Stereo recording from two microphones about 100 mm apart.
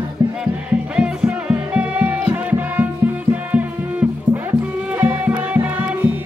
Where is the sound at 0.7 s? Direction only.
10° right (ahead or behind).